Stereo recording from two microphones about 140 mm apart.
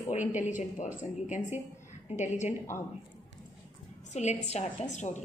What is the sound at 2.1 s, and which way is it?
Speech, 60° left (ahead or behind).